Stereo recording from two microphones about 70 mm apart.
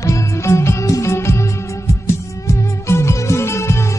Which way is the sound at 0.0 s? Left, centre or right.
Left.